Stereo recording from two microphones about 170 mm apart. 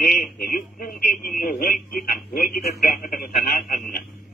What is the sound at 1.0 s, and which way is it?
A man's voice, 55° left (ahead or behind).